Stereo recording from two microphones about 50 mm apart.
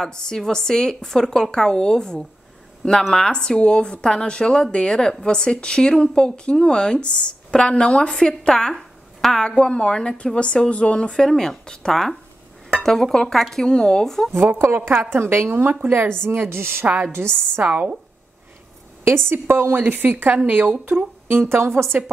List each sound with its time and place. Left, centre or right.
0.0 s a woman's voice: centre
14.3 s a woman's voice: right
15.5 s a woman's voice: right
16.8 s a woman's voice: right
19.0 s a woman's voice: right
21.5 s a woman's voice: right